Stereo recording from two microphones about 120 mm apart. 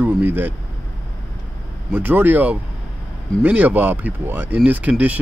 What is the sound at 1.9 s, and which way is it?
Speech, 15° right (ahead or behind).